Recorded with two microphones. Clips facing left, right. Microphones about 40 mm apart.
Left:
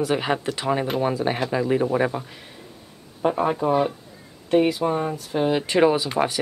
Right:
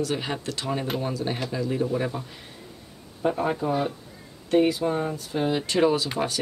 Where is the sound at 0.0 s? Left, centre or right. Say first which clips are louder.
Left 5 dB; left.